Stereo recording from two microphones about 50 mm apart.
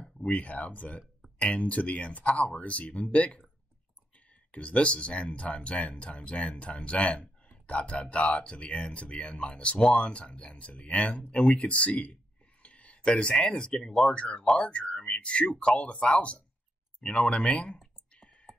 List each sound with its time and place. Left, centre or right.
0.0 s speech: left
4.5 s speech: left
18.5 s a sound: centre